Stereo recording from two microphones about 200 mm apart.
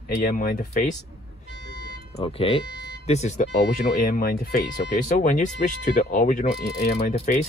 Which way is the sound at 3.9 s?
50° left (ahead or behind).